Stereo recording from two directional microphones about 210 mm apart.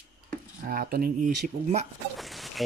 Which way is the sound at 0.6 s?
45° right (ahead or behind).